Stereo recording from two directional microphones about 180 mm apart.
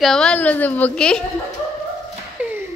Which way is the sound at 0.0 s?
5° left (ahead or behind).